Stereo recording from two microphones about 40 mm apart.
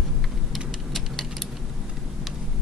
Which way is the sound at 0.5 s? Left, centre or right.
Centre.